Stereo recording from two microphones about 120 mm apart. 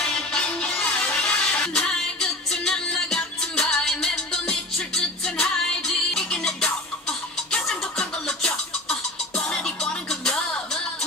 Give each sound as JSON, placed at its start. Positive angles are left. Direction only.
{"t": 0.0, "sound": "music", "side_deg": 5}